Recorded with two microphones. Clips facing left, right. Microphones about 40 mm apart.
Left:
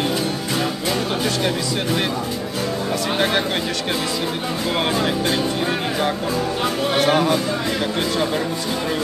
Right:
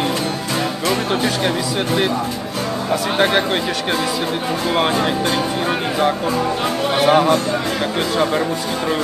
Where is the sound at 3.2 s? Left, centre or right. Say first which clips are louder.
Right 4 dB; centre.